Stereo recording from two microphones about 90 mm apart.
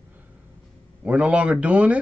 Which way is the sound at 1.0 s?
15° right (ahead or behind).